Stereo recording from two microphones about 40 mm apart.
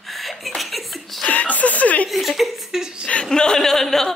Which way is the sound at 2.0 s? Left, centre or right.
Centre.